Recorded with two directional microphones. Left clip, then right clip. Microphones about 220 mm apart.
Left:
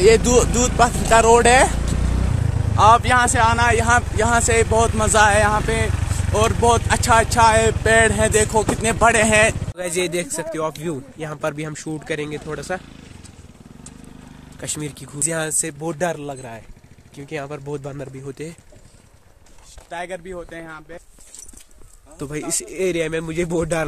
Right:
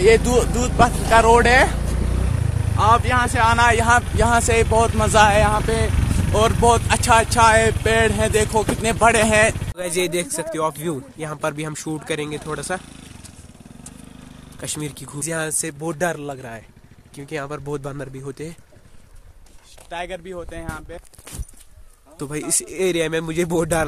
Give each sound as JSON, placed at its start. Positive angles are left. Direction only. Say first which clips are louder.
{"t": 0.0, "sound": "speech", "louder": "left 1 dB", "side_deg": 20}
{"t": 2.7, "sound": "speech", "louder": "left 3 dB", "side_deg": 15}
{"t": 3.3, "sound": "speech", "louder": "right 1 dB", "side_deg": -5}
{"t": 12.8, "sound": "motorcycle", "louder": "right 1 dB", "side_deg": -50}
{"t": 14.6, "sound": "speech", "louder": "even", "side_deg": -5}
{"t": 15.2, "sound": "speech", "louder": "left 2 dB", "side_deg": 5}
{"t": 19.9, "sound": "speech", "louder": "even", "side_deg": -5}
{"t": 22.2, "sound": "speech", "louder": "even", "side_deg": -10}